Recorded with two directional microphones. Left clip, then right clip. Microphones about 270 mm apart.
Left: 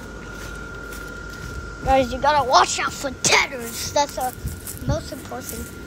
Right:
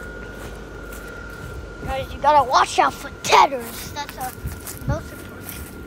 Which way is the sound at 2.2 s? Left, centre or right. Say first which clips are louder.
Right 4 dB; centre.